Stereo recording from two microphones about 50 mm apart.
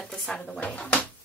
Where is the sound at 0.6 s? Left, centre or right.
Left.